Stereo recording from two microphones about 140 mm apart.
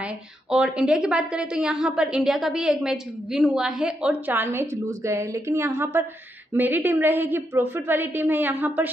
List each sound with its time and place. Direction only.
0.0 s a woman's voice: 5° right (ahead or behind)